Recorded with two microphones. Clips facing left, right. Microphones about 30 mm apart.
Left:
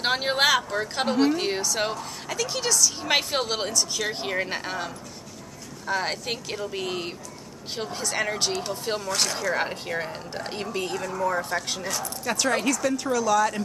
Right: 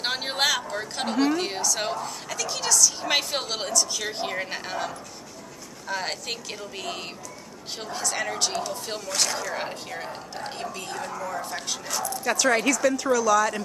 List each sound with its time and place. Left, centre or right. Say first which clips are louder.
0.0 s a woman's voice: left 3 dB; centre
11.1 s speech: left 9 dB; left
12.4 s speech: right 2 dB; centre
12.9 s a woman's voice: right 1 dB; centre